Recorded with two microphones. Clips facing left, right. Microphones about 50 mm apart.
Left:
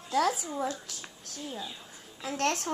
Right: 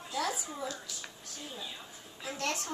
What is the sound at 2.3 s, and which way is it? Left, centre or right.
Speech, left.